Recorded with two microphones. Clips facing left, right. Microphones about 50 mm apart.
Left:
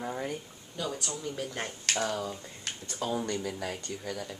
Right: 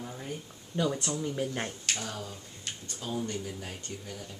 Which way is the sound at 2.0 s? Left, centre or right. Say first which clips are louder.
Left 7 dB; left.